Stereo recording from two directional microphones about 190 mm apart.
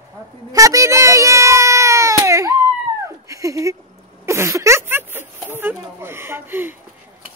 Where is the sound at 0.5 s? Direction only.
15° right (ahead or behind).